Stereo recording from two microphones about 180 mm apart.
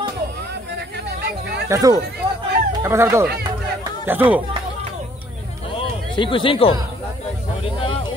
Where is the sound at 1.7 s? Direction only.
20° right (ahead or behind).